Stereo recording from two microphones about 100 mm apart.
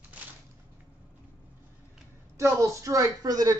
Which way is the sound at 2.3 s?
30° right (ahead or behind).